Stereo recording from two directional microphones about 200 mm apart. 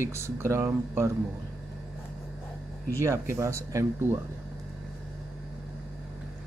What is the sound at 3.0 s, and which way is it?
Speech, 15° right (ahead or behind).